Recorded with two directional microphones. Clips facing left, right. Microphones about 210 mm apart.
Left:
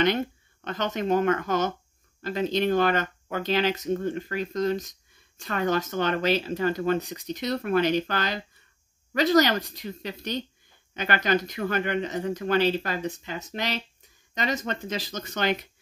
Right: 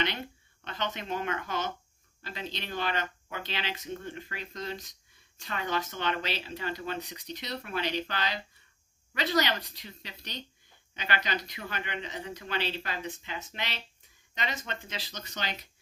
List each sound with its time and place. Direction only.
0.7 s speech: 45° left (ahead or behind)